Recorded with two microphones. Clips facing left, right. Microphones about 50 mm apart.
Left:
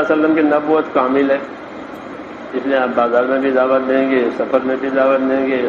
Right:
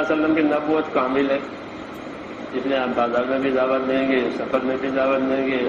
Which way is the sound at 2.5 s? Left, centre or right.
Left.